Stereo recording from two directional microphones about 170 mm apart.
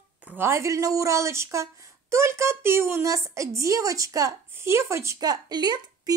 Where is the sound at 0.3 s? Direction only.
15° right (ahead or behind).